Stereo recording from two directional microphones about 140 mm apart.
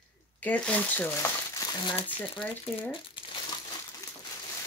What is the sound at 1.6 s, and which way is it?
Speech, 35° left (ahead or behind).